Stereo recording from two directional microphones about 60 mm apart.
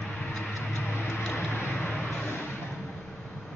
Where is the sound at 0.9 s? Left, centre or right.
Left.